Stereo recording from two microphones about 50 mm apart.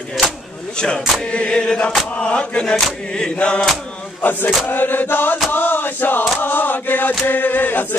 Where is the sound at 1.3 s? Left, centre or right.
Centre.